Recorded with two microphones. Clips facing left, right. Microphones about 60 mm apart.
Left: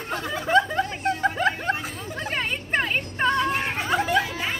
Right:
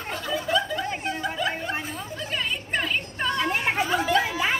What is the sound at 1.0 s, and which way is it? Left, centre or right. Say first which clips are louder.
Snicker: left 7 dB; left.